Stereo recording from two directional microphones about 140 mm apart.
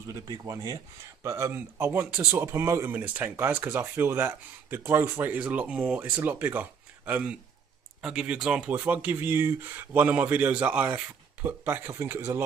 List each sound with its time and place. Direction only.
0.0 s speech: 25° right (ahead or behind)